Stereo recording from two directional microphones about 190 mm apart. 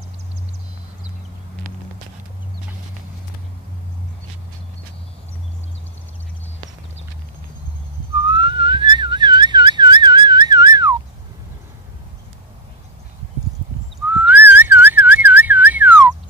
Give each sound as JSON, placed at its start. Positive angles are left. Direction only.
{"t": 8.2, "sound": "whistling", "side_deg": -25}
{"t": 14.1, "sound": "whistling", "side_deg": -10}